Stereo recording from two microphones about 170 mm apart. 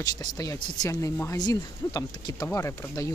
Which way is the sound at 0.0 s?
20° left (ahead or behind).